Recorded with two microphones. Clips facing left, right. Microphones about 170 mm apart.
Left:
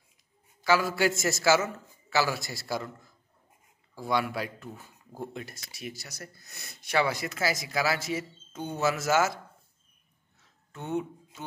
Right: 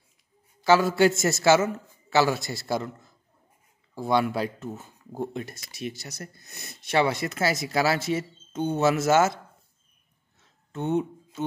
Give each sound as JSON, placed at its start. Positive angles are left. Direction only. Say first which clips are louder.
{"t": 0.7, "sound": "speech", "louder": "right 6 dB", "side_deg": -25}
{"t": 3.9, "sound": "speech", "louder": "right 5 dB", "side_deg": -25}
{"t": 10.7, "sound": "speech", "louder": "right 6 dB", "side_deg": -20}